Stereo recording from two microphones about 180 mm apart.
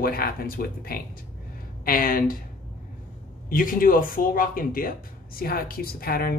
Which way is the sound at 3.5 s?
50° left (ahead or behind).